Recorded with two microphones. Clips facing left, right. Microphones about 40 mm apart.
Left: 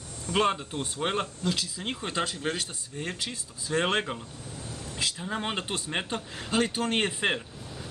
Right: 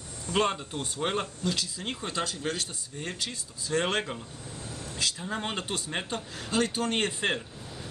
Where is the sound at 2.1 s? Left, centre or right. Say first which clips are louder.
Left 2 dB; left.